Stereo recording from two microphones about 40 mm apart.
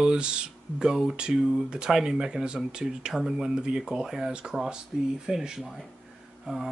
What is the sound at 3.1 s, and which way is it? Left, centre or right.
Speech, centre.